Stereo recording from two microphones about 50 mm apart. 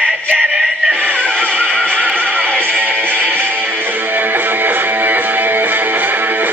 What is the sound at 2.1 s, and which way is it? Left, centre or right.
Music, right.